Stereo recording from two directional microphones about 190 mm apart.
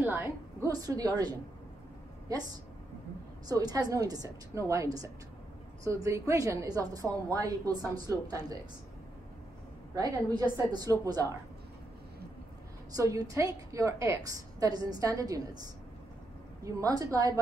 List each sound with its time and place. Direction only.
0.0 s a woman's voice: 10° right (ahead or behind)
9.9 s a woman's voice: 20° right (ahead or behind)
12.9 s a woman's voice: 20° right (ahead or behind)